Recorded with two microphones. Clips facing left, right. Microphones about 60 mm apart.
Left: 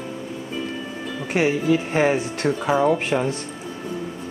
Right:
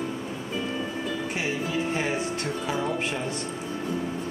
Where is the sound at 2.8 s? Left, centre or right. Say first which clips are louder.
Left 8 dB; left.